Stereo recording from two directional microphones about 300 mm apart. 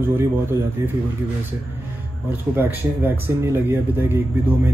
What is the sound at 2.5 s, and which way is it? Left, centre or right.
Speech, centre.